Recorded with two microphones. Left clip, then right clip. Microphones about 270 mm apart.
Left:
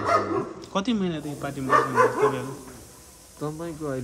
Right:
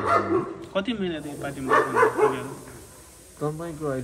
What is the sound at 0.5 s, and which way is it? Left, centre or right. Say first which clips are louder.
A man's voice: even; centre.